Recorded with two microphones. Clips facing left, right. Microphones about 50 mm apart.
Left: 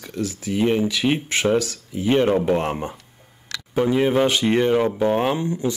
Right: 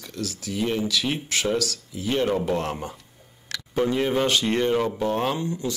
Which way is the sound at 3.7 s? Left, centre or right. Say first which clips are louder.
Left 4 dB; centre.